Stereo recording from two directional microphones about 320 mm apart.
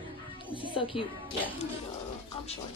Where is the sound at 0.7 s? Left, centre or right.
Centre.